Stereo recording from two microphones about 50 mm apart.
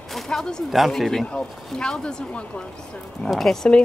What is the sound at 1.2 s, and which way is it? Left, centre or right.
Speech, centre.